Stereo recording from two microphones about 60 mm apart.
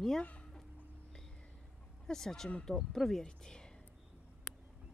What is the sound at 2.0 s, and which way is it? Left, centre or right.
Speech, centre.